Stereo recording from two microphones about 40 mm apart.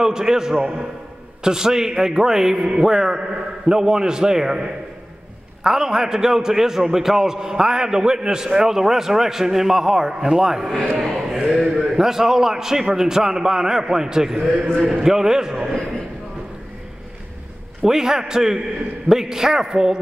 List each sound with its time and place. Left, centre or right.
0.0 s a man's voice: centre
0.6 s a man's voice: right
1.4 s a man's voice: centre
10.7 s a man's voice: centre
11.0 s a man's voice: centre
17.8 s a man's voice: centre